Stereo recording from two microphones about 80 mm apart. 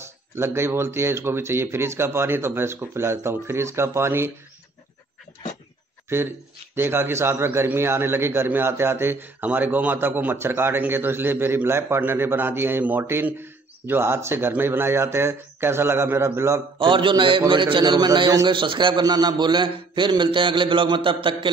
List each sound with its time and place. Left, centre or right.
0.4 s speech: right
6.0 s a man's voice: right
16.7 s a man's voice: right
18.5 s a man's voice: right